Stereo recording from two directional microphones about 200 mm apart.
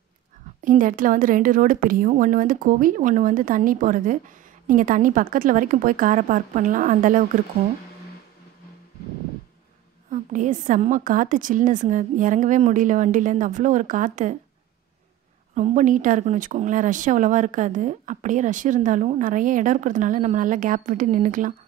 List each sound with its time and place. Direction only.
0.7 s a woman's voice: 40° right (ahead or behind)
10.1 s speech: 40° right (ahead or behind)
15.5 s speech: 40° right (ahead or behind)